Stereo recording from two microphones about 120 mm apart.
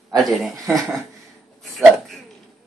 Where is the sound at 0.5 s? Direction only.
30° right (ahead or behind).